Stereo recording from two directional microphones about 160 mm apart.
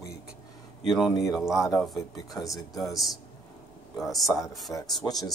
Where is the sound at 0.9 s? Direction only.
Centre (ahead or behind).